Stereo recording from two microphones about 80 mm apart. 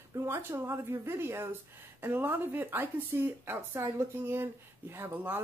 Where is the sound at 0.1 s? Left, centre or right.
Right.